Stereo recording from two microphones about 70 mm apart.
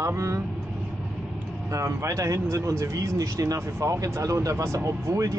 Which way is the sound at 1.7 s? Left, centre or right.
Right.